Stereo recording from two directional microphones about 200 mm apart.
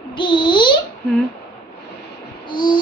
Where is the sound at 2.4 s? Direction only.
25° left (ahead or behind).